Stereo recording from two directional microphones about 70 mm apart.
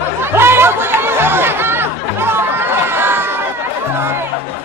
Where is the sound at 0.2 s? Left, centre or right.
Right.